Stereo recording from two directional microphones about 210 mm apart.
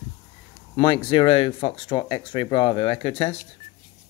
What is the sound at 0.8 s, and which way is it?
Speech, 25° left (ahead or behind).